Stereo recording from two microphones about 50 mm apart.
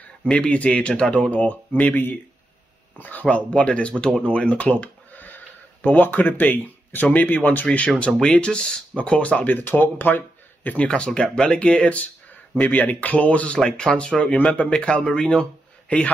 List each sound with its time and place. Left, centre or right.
0.3 s speech: left
1.3 s speech: left
11.3 s speech: centre
13.7 s speech: centre
14.7 s speech: centre